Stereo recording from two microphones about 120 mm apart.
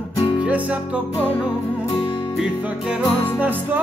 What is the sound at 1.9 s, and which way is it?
Music, 45° left (ahead or behind).